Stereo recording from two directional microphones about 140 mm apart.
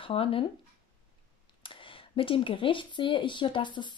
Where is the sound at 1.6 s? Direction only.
35° left (ahead or behind).